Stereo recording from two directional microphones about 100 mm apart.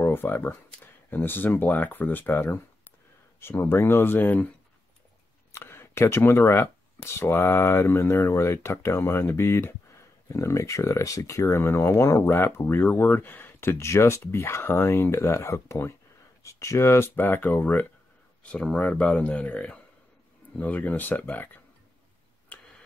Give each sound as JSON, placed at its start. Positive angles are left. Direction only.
{"t": 0.0, "sound": "speech", "side_deg": 20}
{"t": 5.5, "sound": "speech", "side_deg": 25}